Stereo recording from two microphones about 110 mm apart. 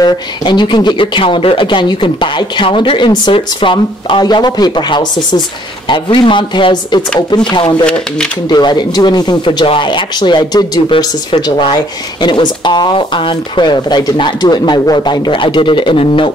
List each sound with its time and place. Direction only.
0.0 s speech: 45° left (ahead or behind)
7.8 s speech: 10° left (ahead or behind)
8.5 s speech: 40° left (ahead or behind)